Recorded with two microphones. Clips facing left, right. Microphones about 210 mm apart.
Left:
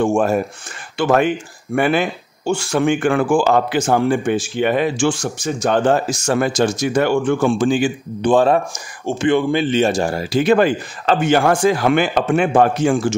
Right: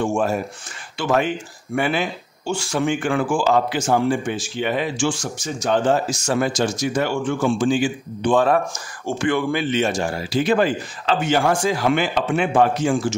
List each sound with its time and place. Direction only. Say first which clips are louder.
0.0 s speech: left 5 dB; 55° left (ahead or behind)
8.3 s speech: left 3 dB; 30° left (ahead or behind)
8.7 s speech: left 3 dB; 20° left (ahead or behind); by 13.1 s 55° left (ahead or behind)